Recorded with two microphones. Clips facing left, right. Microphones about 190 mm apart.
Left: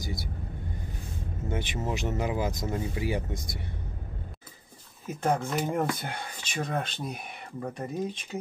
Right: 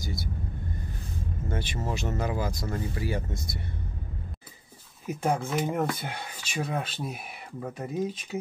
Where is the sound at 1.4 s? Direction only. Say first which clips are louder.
Left 1 dB; 15° left (ahead or behind).